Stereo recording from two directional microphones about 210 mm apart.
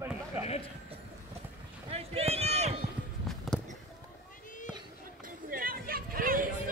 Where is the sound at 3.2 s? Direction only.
Centre (ahead or behind).